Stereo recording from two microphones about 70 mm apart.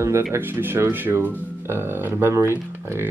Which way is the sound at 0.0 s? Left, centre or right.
Right.